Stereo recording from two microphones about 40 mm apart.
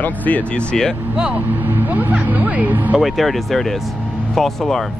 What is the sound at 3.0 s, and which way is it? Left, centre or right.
Speech, centre.